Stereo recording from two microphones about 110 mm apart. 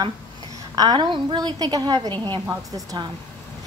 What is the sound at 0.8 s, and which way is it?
A woman's voice, 45° right (ahead or behind).